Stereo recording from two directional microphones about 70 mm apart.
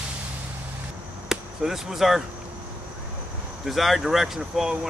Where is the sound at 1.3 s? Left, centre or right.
Centre.